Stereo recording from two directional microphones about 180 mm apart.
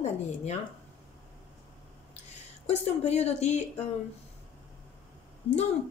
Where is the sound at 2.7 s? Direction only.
35° left (ahead or behind).